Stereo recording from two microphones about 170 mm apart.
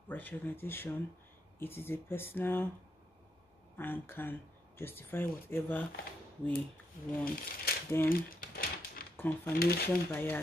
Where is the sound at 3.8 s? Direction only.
10° left (ahead or behind).